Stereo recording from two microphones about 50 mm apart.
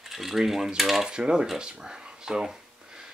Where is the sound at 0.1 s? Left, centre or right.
Centre.